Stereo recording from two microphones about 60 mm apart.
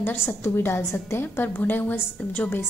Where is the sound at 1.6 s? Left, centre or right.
Left.